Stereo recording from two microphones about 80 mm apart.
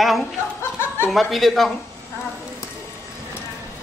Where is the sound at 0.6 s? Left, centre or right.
Left.